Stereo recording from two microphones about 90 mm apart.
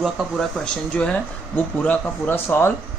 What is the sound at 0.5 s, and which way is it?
Speech, 10° left (ahead or behind).